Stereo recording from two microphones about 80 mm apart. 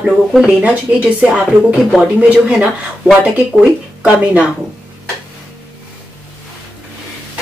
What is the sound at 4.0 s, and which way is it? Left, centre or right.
Speech, centre.